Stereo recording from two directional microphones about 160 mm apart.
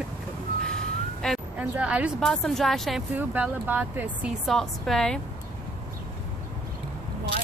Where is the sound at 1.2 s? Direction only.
5° left (ahead or behind).